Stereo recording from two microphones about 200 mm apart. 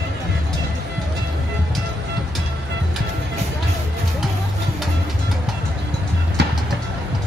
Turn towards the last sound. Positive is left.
turn(degrees=-55)  # may be behind; listen again after turning